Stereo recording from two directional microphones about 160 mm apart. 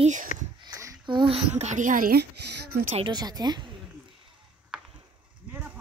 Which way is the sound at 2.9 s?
30° right (ahead or behind).